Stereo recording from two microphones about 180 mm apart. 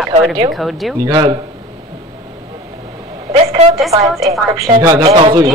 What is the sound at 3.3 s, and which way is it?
Speech, 35° right (ahead or behind).